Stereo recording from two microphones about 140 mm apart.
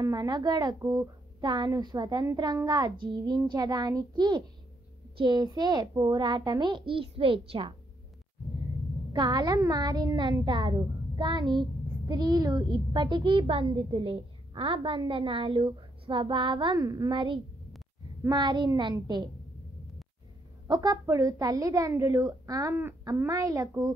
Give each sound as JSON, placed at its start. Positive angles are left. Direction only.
{"t": 0.0, "sound": "a woman's voice", "side_deg": -30}
{"t": 9.1, "sound": "a child's voice", "side_deg": -30}
{"t": 20.6, "sound": "a woman's voice", "side_deg": -30}